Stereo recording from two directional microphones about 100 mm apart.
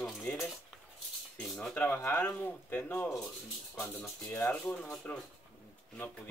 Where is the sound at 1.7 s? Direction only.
25° left (ahead or behind).